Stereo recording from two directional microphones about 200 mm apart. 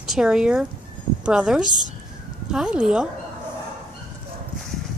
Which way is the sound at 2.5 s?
5° right (ahead or behind).